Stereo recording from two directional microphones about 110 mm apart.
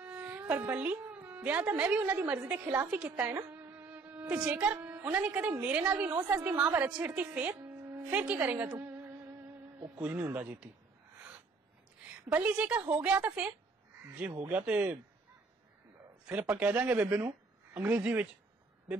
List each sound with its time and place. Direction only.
0.0 s a woman's voice: 15° right (ahead or behind)
2.8 s music: 15° right (ahead or behind)
5.1 s speech: 15° right (ahead or behind)
8.6 s speech: 30° right (ahead or behind)
12.1 s a woman's voice: 10° right (ahead or behind)
16.3 s speech: 15° right (ahead or behind)